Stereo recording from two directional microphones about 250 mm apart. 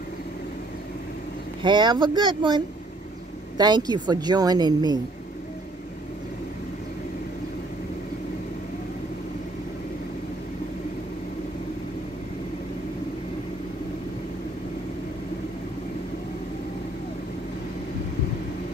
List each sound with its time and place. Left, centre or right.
1.6 s speech: centre